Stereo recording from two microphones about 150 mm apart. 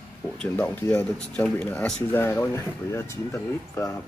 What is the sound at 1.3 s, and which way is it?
Speech, 5° left (ahead or behind).